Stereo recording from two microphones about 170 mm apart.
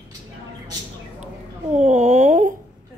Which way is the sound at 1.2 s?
45° right (ahead or behind).